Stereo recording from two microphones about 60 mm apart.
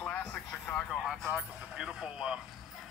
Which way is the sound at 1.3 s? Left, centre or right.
Centre.